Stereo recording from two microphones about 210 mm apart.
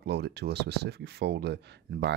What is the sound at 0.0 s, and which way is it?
Speech, 50° right (ahead or behind).